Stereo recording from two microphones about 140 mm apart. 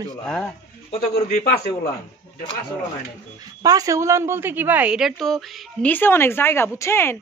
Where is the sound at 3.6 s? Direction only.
25° right (ahead or behind).